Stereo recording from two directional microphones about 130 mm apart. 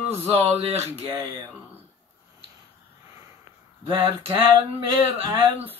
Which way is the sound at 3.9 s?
40° right (ahead or behind).